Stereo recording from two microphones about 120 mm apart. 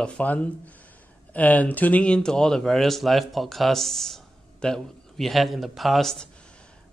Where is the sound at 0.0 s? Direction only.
10° left (ahead or behind).